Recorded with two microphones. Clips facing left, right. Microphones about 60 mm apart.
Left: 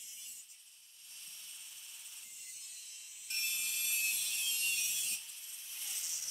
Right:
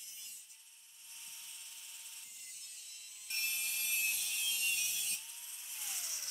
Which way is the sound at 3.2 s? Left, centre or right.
Centre.